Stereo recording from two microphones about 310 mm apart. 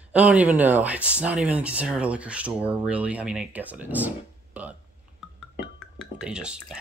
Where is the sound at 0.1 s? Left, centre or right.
Centre.